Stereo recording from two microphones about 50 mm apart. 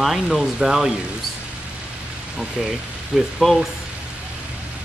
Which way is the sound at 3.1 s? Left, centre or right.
Centre.